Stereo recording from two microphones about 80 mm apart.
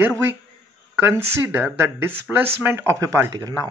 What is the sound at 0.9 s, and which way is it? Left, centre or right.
Speech, right.